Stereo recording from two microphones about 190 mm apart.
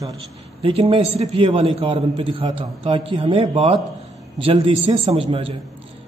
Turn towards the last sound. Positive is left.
turn(degrees=-30)  # may be behind; listen again after turning